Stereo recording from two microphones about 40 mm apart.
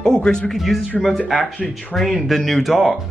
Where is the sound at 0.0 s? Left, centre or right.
Centre.